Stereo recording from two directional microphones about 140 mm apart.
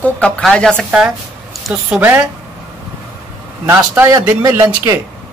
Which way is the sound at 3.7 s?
20° right (ahead or behind).